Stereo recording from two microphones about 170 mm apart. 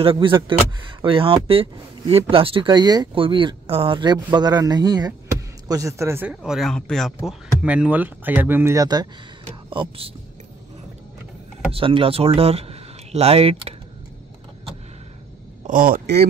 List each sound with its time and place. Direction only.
0.0 s speech: 30° right (ahead or behind)
9.5 s speech: 30° right (ahead or behind)
11.7 s speech: 30° right (ahead or behind)
15.6 s a man's voice: 55° right (ahead or behind)